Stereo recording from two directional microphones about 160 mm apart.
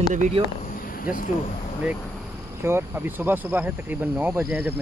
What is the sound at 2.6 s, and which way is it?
Speech, 15° right (ahead or behind).